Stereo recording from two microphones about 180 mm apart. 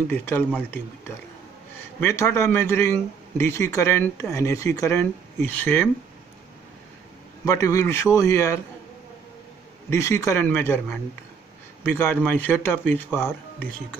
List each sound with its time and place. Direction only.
0.1 s a man's voice: 10° left (ahead or behind)
7.4 s a man's voice: 20° left (ahead or behind)
9.8 s a man's voice: 15° left (ahead or behind)
11.8 s a man's voice: 10° left (ahead or behind)